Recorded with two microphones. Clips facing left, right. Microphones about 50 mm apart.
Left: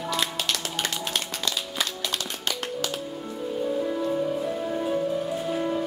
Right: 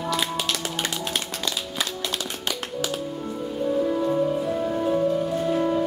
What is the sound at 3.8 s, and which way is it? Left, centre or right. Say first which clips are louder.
Music: right 4 dB; centre.